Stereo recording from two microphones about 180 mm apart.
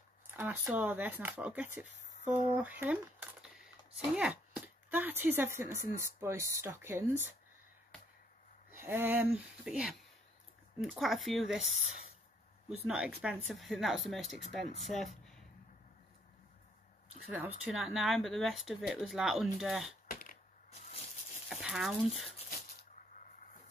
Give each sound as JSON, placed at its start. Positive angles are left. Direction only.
{"t": 0.4, "sound": "speech", "side_deg": -10}
{"t": 2.0, "sound": "a sound", "side_deg": 40}
{"t": 2.5, "sound": "speech", "side_deg": -10}
{"t": 8.8, "sound": "speech", "side_deg": -10}
{"t": 12.8, "sound": "speech", "side_deg": -5}
{"t": 17.3, "sound": "speech", "side_deg": -5}
{"t": 20.1, "sound": "a sound", "side_deg": 50}
{"t": 21.5, "sound": "speech", "side_deg": 0}